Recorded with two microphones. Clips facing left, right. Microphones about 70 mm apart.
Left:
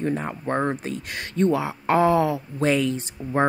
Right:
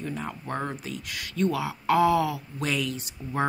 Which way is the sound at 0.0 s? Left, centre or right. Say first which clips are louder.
Left 8 dB; left.